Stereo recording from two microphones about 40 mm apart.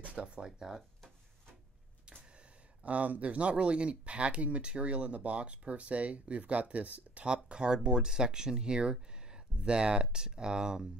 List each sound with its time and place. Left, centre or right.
0.0 s speech: right
0.6 s speech: centre
2.8 s speech: right; by 10.9 s centre